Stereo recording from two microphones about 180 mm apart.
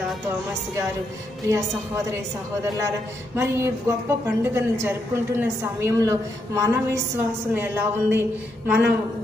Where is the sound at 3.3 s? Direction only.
15° right (ahead or behind).